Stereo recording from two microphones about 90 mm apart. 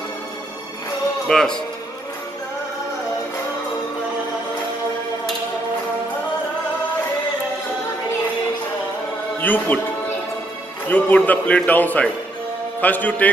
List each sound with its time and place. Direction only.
1.2 s a man's voice: 5° left (ahead or behind)
9.4 s a man's voice: 20° left (ahead or behind)
10.9 s a man's voice: 15° left (ahead or behind)